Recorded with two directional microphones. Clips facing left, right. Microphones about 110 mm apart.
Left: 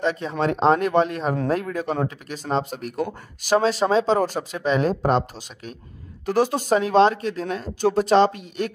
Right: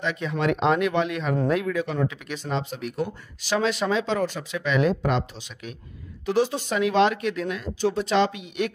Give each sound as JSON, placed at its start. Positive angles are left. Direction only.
{"t": 0.0, "sound": "speech", "side_deg": 35}
{"t": 7.8, "sound": "speech", "side_deg": 45}